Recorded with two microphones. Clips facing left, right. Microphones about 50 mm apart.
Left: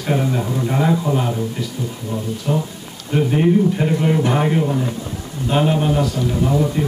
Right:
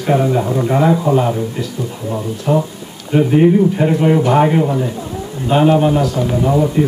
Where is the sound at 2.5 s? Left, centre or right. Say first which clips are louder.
Right 8 dB; centre.